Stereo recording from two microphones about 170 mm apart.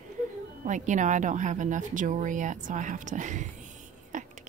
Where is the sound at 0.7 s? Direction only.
45° right (ahead or behind).